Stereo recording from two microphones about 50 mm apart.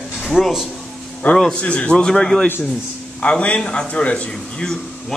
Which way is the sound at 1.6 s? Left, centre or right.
Left.